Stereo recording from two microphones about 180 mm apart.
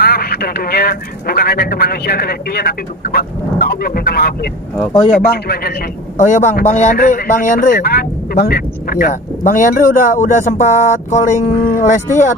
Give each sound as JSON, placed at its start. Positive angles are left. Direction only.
{"t": 0.0, "sound": "speech", "side_deg": 60}
{"t": 5.3, "sound": "speech", "side_deg": 60}
{"t": 6.1, "sound": "a man's voice", "side_deg": 45}